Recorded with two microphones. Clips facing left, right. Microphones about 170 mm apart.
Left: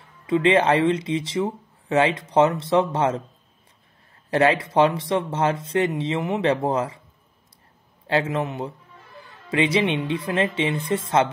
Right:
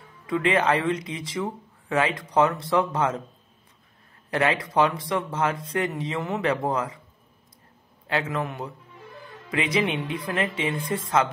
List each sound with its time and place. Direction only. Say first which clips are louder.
0.3 s speech: left 4 dB; 25° left (ahead or behind)
4.3 s speech: left 5 dB; 30° left (ahead or behind)
8.1 s speech: left 4 dB; 25° left (ahead or behind)